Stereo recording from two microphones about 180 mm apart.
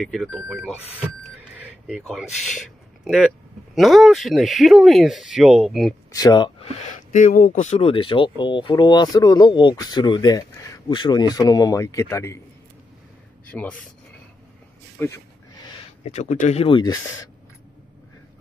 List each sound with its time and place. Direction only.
0.0 s speech: centre (ahead or behind)
1.9 s speech: centre (ahead or behind)
3.7 s speech: centre (ahead or behind)
6.1 s speech: 25° left (ahead or behind)
6.9 s speech: 45° left (ahead or behind); by 12.4 s 15° left (ahead or behind)
13.5 s speech: 10° left (ahead or behind)
15.0 s speech: 10° left (ahead or behind)
16.0 s speech: 40° left (ahead or behind); by 17.3 s 20° left (ahead or behind)